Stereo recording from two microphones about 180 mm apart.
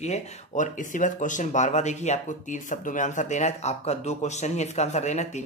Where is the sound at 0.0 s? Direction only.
40° left (ahead or behind).